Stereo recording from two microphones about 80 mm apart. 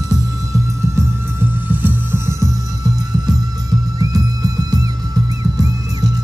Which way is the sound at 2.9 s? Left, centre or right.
Right.